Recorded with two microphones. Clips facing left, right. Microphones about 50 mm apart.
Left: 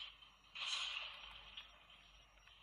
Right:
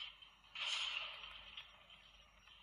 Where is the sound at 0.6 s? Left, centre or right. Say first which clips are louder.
Right 2 dB; right.